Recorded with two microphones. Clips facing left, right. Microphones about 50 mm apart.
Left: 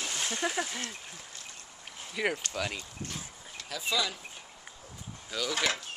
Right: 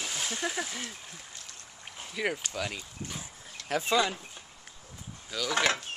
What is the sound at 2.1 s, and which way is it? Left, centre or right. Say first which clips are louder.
Speech: left 1 dB; centre.